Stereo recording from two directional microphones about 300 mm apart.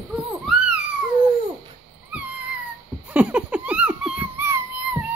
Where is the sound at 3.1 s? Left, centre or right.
Centre.